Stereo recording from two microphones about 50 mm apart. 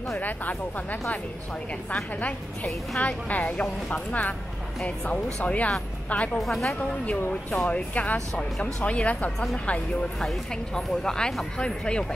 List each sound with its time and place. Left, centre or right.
0.2 s a woman's voice: left
2.1 s a woman's voice: left
6.3 s a woman's voice: centre
7.5 s speech: left
10.2 s a woman's voice: centre